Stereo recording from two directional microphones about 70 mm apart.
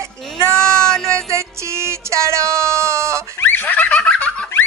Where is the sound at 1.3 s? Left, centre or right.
Right.